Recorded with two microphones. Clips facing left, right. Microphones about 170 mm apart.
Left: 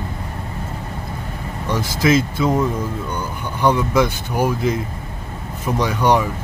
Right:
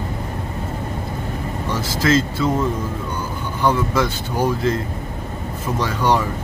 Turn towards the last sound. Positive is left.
turn(degrees=15)  # may be behind; listen again after turning